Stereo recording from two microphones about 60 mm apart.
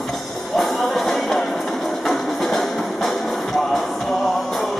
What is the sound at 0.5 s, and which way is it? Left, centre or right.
Music, centre.